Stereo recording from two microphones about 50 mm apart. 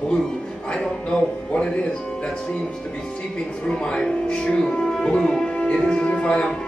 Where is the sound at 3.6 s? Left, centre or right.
Centre.